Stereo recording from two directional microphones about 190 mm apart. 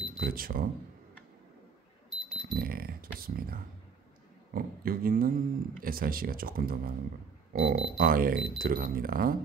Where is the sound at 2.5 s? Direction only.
50° right (ahead or behind).